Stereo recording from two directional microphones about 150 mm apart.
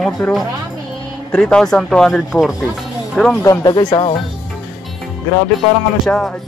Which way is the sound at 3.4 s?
25° left (ahead or behind).